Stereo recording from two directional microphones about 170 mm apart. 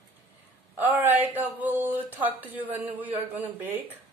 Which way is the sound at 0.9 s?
10° right (ahead or behind).